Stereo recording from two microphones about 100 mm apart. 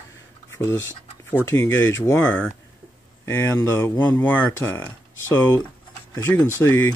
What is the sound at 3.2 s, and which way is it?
Speech, 25° left (ahead or behind).